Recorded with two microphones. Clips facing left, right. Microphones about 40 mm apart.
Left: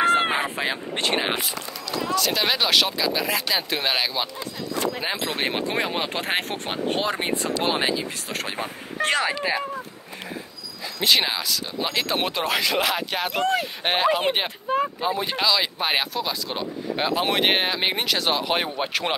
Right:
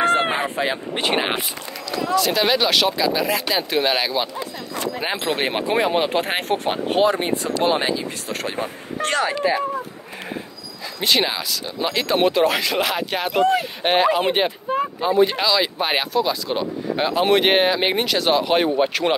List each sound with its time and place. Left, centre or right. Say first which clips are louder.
0.0 s a sound: right 1 dB; centre
0.9 s speech: right 2 dB; centre
2.0 s speech: right 5 dB; centre
5.0 s speech: right 3 dB; centre
11.0 s speech: right 1 dB; centre